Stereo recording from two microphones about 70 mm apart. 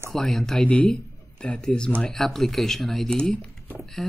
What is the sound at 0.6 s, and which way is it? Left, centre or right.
Speech, left.